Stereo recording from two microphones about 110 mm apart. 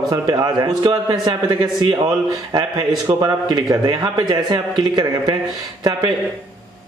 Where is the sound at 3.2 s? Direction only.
35° right (ahead or behind).